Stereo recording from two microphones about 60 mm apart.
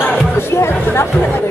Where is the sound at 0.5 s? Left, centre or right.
Left.